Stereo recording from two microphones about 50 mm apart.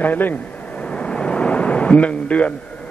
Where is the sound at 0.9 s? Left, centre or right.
Centre.